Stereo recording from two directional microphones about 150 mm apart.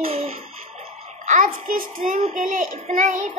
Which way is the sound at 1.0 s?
55° right (ahead or behind).